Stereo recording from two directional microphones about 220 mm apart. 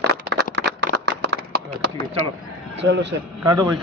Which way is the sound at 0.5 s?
50° right (ahead or behind).